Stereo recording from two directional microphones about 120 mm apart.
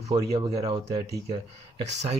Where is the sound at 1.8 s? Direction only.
65° right (ahead or behind).